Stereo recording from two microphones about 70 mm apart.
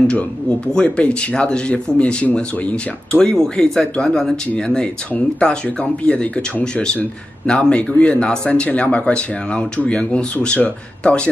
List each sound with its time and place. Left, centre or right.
0.7 s speech: centre